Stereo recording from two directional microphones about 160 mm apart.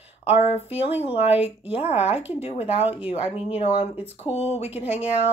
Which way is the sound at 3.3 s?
35° left (ahead or behind).